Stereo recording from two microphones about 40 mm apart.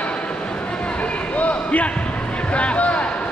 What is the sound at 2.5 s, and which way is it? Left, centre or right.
Speech, left.